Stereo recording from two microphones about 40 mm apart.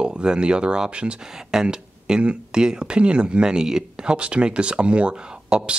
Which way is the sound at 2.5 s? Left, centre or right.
Centre.